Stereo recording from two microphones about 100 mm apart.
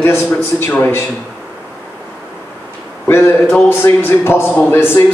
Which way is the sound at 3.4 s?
10° left (ahead or behind).